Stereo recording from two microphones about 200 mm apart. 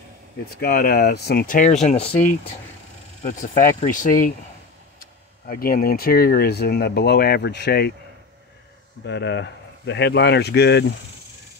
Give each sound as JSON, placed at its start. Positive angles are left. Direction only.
{"t": 0.6, "sound": "speech", "side_deg": 50}
{"t": 3.2, "sound": "speech", "side_deg": 40}
{"t": 5.5, "sound": "speech", "side_deg": 45}
{"t": 9.0, "sound": "speech", "side_deg": 60}